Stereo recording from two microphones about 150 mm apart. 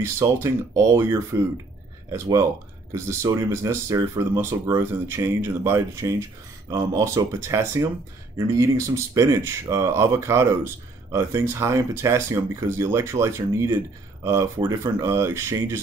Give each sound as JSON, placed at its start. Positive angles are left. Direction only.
{"t": 0.0, "sound": "speech", "side_deg": -20}